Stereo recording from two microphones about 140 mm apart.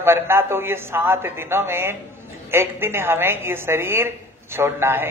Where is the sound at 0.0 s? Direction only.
15° right (ahead or behind).